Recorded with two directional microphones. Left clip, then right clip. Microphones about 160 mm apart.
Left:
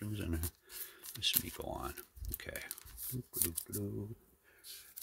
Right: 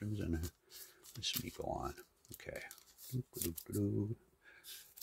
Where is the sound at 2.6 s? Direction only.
25° left (ahead or behind).